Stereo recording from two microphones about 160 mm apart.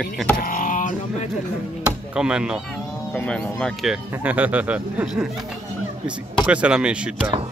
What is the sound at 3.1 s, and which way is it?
Speech, 5° left (ahead or behind).